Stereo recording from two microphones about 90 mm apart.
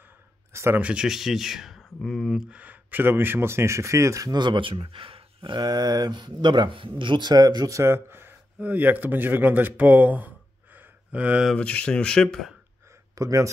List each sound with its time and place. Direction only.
0.5 s a sound: 30° right (ahead or behind)
0.7 s speech: 10° right (ahead or behind)
2.5 s speech: 15° right (ahead or behind); by 4.4 s 40° right (ahead or behind)
4.4 s speech: 65° right (ahead or behind); by 7.8 s 40° right (ahead or behind)
7.8 s speech: 25° right (ahead or behind)
11.5 s speech: 15° left (ahead or behind)
13.1 s speech: 40° right (ahead or behind)